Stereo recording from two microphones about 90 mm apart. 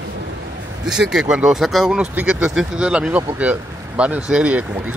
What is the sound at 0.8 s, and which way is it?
Speech, 5° right (ahead or behind).